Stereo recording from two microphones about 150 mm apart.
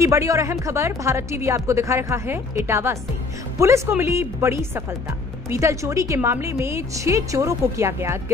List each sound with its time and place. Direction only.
0.0 s a woman's voice: 20° right (ahead or behind)